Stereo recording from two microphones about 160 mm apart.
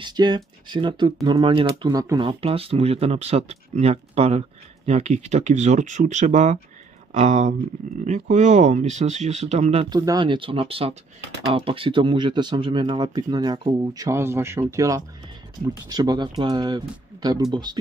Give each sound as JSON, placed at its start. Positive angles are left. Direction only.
{"t": 0.0, "sound": "speech", "side_deg": -25}
{"t": 9.8, "sound": "speech", "side_deg": -25}